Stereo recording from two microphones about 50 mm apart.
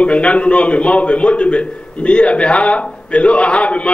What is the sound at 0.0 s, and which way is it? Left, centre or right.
A man's voice, left.